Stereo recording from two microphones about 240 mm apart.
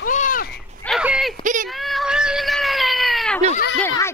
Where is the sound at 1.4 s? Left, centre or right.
Right.